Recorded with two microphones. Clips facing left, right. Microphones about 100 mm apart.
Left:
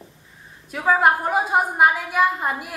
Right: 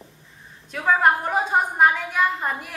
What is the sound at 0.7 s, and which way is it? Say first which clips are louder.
A woman's voice: left 1 dB; 5° left (ahead or behind).